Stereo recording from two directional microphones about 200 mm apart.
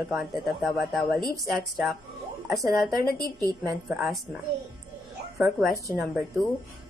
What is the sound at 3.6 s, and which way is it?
Speech, centre (ahead or behind).